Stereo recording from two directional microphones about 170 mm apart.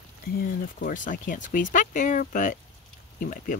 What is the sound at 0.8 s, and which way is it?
Speech, 55° left (ahead or behind).